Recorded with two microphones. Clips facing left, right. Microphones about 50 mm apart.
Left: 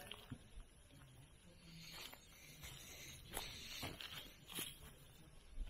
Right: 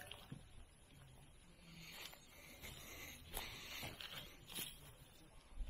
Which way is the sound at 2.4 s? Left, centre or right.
Centre.